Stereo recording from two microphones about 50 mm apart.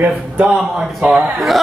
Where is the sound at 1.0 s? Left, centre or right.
Right.